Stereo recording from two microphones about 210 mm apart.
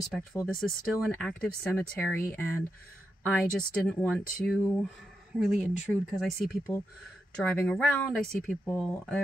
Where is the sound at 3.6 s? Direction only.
5° left (ahead or behind).